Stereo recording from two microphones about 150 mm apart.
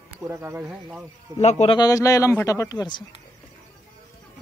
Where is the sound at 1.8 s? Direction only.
20° left (ahead or behind).